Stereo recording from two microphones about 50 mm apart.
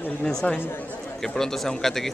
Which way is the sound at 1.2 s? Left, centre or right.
Centre.